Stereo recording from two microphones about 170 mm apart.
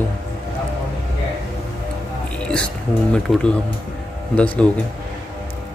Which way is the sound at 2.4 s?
5° left (ahead or behind).